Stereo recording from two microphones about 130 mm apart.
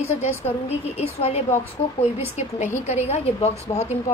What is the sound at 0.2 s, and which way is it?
A woman's voice, 55° left (ahead or behind).